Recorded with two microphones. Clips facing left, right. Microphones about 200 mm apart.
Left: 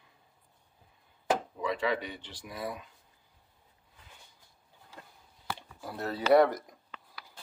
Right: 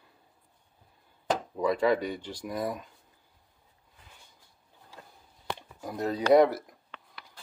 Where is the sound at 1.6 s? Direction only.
40° right (ahead or behind).